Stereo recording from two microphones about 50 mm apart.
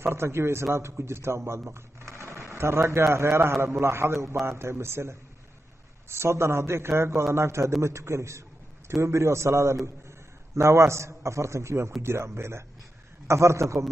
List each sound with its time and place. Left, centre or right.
0.0 s a man's voice: right
7.8 s a sound: right
9.0 s a man's voice: right
13.3 s a man's voice: right